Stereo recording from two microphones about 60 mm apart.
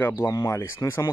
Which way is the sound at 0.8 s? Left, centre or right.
Left.